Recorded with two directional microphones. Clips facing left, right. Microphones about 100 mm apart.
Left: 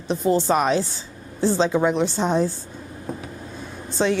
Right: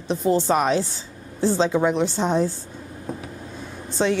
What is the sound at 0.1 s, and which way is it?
A woman's voice, 15° left (ahead or behind).